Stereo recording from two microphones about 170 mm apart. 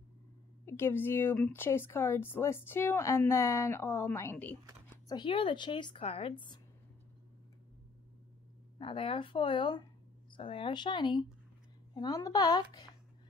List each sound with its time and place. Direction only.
0.7 s speech: 15° left (ahead or behind)
5.0 s a woman's voice: 25° left (ahead or behind)
8.7 s a woman's voice: 30° left (ahead or behind)